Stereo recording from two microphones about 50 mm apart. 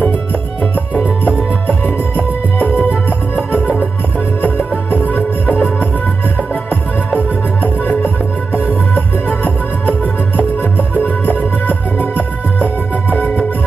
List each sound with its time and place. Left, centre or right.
1.0 s music: left
4.9 s music: left
8.9 s music: left
10.6 s music: left
13.1 s music: left